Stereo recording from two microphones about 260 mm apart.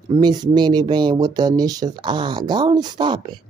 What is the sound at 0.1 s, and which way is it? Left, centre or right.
Speech, centre.